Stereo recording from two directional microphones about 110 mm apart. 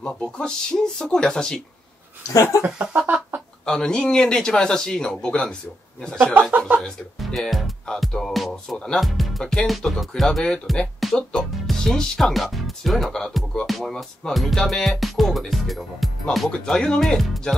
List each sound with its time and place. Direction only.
0.0 s speech: 5° left (ahead or behind)
2.3 s speech: 30° left (ahead or behind)
2.6 s a sound: 15° right (ahead or behind)
3.6 s a man's voice: 5° left (ahead or behind)
6.1 s speech: 20° right (ahead or behind)
6.8 s speech: 5° left (ahead or behind)